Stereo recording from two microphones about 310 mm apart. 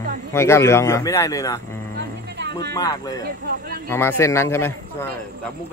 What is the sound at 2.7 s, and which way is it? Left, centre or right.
Speech, centre.